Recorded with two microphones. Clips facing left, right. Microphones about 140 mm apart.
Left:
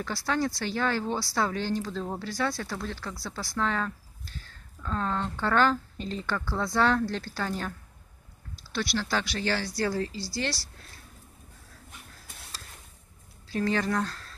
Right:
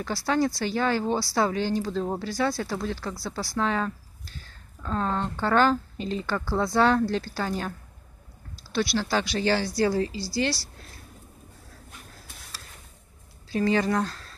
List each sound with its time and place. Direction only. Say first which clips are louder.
0.1 s speech: right 5 dB; 5° right (ahead or behind)
1.9 s speech: right 5 dB; 20° right (ahead or behind)
2.2 s speech: right 4 dB; 5° right (ahead or behind)
9.1 s speech: right 6 dB; 20° right (ahead or behind)
13.5 s speech: right 4 dB; 10° right (ahead or behind)